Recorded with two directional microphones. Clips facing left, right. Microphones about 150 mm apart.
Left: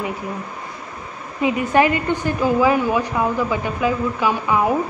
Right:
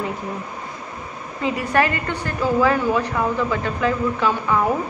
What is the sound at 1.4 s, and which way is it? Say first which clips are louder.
Speech: left 3 dB; 20° left (ahead or behind).